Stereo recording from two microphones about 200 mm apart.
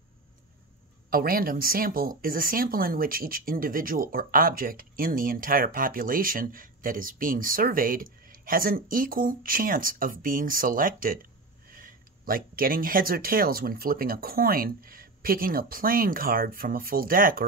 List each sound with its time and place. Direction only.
1.1 s speech: 45° right (ahead or behind)